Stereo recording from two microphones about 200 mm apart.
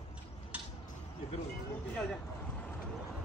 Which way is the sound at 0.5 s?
5° right (ahead or behind).